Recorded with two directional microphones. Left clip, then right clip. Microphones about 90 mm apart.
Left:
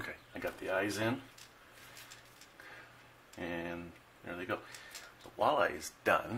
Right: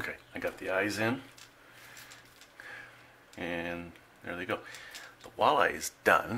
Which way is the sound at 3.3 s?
30° right (ahead or behind).